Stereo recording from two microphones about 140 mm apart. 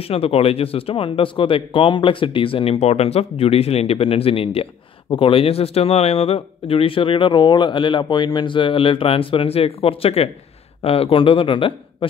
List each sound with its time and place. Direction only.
0.0 s speech: 45° left (ahead or behind)